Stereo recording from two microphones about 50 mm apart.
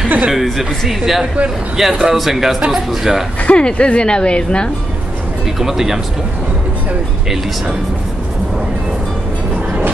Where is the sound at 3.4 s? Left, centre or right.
Left.